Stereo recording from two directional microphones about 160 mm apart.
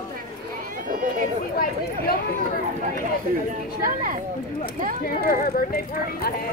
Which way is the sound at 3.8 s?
60° right (ahead or behind).